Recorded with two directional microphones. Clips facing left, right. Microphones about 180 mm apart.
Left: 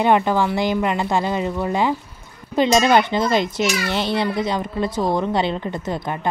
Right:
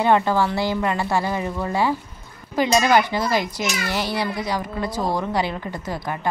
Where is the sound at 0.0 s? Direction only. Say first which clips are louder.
Left 1 dB; 15° left (ahead or behind).